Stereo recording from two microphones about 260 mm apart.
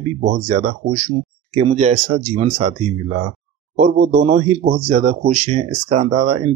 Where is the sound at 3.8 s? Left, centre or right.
Right.